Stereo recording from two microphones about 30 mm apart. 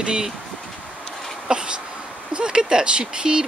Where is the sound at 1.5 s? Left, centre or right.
Right.